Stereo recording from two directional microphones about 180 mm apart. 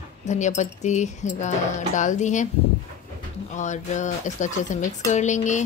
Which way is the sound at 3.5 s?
40° left (ahead or behind).